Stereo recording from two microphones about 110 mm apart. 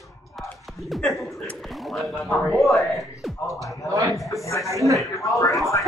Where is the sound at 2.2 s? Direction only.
Centre (ahead or behind).